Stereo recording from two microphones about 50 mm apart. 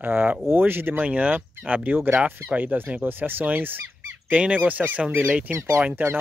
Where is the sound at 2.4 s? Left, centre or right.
Right.